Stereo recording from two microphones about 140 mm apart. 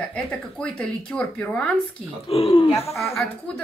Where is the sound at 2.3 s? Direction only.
45° left (ahead or behind).